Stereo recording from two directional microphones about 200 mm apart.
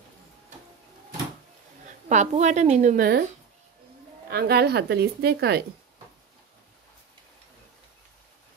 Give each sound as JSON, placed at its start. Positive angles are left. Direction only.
{"t": 2.0, "sound": "a woman's voice", "side_deg": -35}
{"t": 4.3, "sound": "speech", "side_deg": -55}